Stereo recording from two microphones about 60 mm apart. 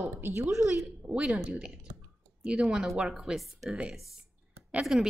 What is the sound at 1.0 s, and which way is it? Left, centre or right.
A woman's voice, centre.